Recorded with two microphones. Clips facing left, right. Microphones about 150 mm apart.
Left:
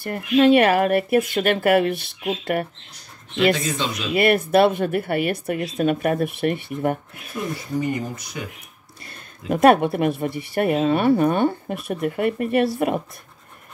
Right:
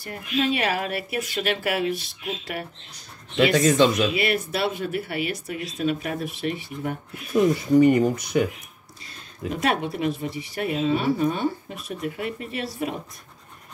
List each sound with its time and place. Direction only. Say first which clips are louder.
0.0 s speech: left 9 dB; 55° left (ahead or behind)
3.5 s speech: right 8 dB; 50° right (ahead or behind)
4.1 s speech: left 7 dB; 55° left (ahead or behind)
7.8 s speech: right 8 dB; 60° right (ahead or behind)
9.5 s speech: left 10 dB; 55° left (ahead or behind)